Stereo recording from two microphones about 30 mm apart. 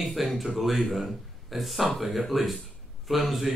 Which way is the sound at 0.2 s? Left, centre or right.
Centre.